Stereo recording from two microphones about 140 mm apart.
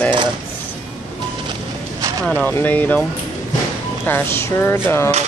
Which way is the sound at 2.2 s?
10° left (ahead or behind).